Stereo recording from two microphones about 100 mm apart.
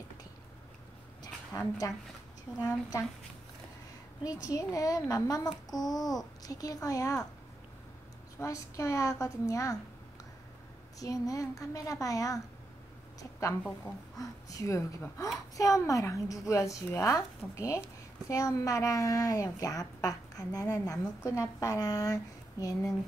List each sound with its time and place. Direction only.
1.5 s a child's voice: 35° left (ahead or behind)
4.2 s a child's voice: 35° left (ahead or behind)
8.4 s a child's voice: 30° left (ahead or behind)
11.0 s a child's voice: 35° left (ahead or behind)